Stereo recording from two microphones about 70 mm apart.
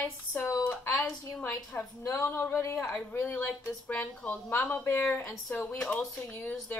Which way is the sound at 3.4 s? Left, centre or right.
Centre.